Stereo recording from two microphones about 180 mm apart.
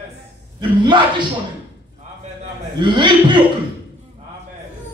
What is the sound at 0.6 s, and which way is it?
Speech, 25° right (ahead or behind).